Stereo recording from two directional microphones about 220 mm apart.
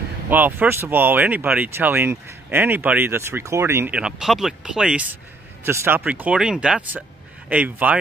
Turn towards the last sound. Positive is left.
turn(degrees=-5)  # may be behind; listen again after turning